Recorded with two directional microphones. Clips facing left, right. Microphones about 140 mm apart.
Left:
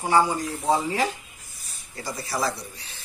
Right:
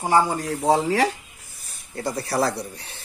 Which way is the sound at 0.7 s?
80° right.